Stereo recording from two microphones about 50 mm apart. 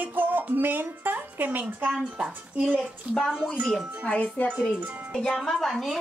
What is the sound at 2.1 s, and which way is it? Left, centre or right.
Speech, right.